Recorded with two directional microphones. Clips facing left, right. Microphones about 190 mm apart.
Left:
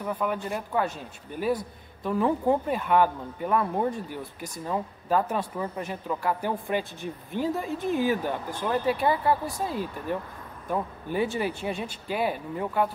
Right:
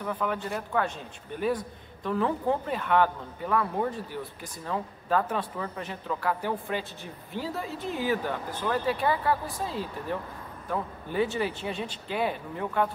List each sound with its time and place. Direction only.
0.0 s speech: 10° left (ahead or behind)
2.0 s speech: 10° left (ahead or behind)
7.8 s speech: 45° left (ahead or behind)
8.2 s speech: 15° left (ahead or behind)